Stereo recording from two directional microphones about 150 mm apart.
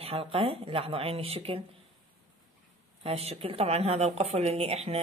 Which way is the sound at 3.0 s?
40° right (ahead or behind).